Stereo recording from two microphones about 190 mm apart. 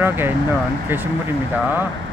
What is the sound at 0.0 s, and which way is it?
Speech, 10° right (ahead or behind).